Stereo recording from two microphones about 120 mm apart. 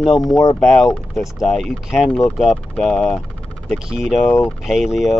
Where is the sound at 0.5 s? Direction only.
5° left (ahead or behind).